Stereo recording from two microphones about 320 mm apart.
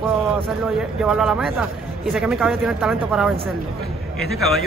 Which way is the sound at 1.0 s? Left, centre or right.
Centre.